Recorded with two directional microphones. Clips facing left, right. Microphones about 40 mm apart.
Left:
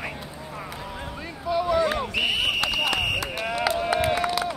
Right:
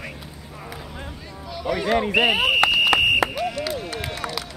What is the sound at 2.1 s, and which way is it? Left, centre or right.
Speech, right.